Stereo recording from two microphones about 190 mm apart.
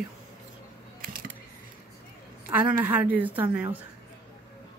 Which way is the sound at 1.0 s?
50° right (ahead or behind).